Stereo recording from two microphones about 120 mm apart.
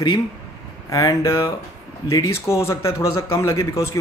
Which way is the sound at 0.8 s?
25° left (ahead or behind).